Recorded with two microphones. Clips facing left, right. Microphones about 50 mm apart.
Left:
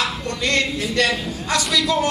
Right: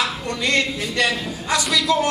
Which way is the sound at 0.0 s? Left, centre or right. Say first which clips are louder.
Even; centre.